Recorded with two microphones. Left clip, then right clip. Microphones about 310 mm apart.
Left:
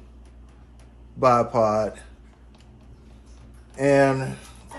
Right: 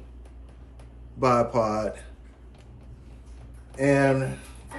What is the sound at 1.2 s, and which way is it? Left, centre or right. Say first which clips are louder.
Speech: left 4 dB; centre.